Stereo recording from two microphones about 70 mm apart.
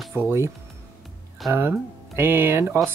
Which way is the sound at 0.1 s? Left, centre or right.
Right.